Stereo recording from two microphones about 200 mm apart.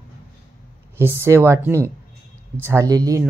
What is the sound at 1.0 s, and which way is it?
Speech, 10° right (ahead or behind).